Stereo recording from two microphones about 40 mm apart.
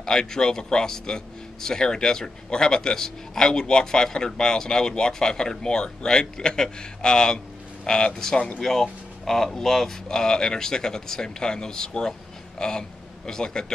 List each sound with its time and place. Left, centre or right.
0.0 s a man's voice: centre